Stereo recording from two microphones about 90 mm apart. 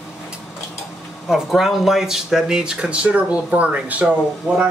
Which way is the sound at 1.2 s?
5° right (ahead or behind).